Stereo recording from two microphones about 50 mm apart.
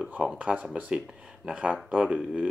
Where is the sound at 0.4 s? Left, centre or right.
Right.